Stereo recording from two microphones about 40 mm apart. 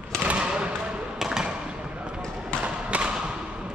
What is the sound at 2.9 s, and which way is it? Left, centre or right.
Thump, right.